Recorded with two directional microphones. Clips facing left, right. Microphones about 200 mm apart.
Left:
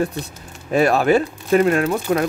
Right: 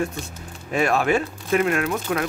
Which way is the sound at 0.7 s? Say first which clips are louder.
Left 5 dB; 35° left (ahead or behind).